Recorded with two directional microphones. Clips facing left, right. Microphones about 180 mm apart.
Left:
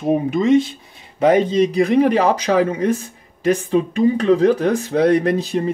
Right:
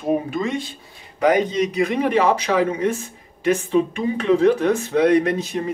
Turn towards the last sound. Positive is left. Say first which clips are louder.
# left 2 dB
turn(degrees=35)  # may be behind; listen again after turning